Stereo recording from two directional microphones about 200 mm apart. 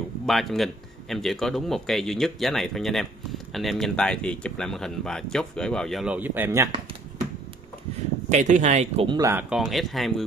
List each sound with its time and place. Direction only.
0.3 s speech: centre (ahead or behind)
8.3 s speech: 35° right (ahead or behind)
9.3 s speech: 5° right (ahead or behind)